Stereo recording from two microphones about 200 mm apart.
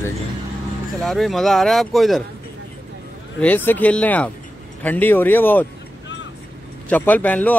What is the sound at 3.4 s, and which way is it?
Speech, 10° left (ahead or behind).